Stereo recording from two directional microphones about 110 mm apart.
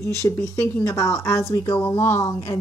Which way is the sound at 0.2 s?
25° left (ahead or behind).